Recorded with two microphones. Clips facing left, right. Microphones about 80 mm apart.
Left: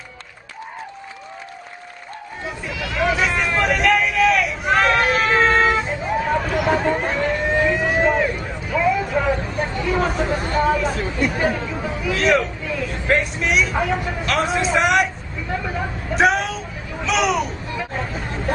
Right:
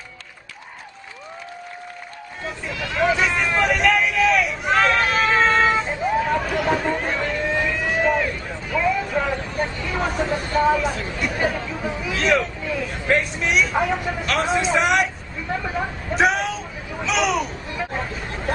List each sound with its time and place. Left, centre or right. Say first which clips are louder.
2.6 s hubbub: right 1 dB; centre
5.6 s vehicle: left 1 dB; centre
6.6 s a sound: left 2 dB; centre
8.7 s speech: left 2 dB; centre
9.8 s speech: left 7 dB; centre
10.8 s speech: left 3 dB; left
11.8 s speech: left 3 dB; centre